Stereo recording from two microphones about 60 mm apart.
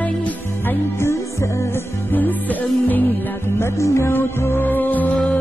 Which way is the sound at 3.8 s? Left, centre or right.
Left.